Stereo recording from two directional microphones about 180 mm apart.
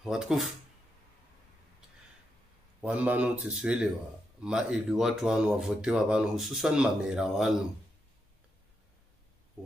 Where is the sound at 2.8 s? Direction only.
5° right (ahead or behind).